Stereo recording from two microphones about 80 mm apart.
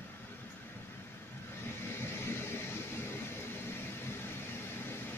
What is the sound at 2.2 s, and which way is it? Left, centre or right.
Vehicle, left.